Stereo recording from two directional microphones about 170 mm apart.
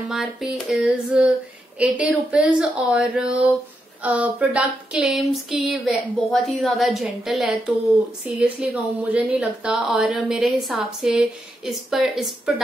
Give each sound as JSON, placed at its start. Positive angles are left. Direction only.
{"t": 0.1, "sound": "speech", "side_deg": -5}